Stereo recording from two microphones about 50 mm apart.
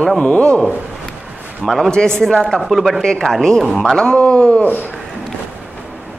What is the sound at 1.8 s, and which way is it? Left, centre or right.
Speech, centre.